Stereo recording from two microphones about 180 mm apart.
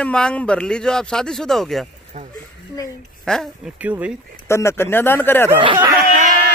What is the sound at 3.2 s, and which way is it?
Speech, 5° left (ahead or behind).